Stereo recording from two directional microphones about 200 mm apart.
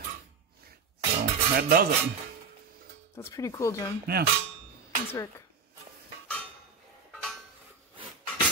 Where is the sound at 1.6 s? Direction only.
50° right (ahead or behind).